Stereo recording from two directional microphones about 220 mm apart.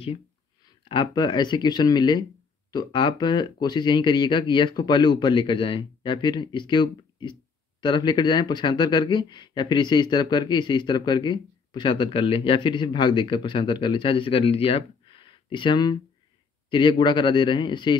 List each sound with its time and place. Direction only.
0.8 s a man's voice: 20° left (ahead or behind)